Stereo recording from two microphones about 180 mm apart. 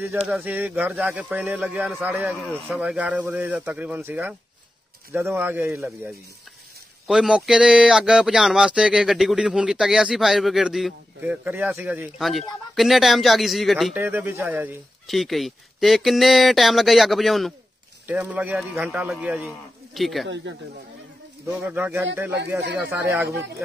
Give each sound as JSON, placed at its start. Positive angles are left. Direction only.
{"t": 0.3, "sound": "speech", "side_deg": -10}
{"t": 5.8, "sound": "speech", "side_deg": 0}
{"t": 12.2, "sound": "speech", "side_deg": 0}
{"t": 13.9, "sound": "speech", "side_deg": -10}
{"t": 20.2, "sound": "speech", "side_deg": -90}
{"t": 21.5, "sound": "speech", "side_deg": -10}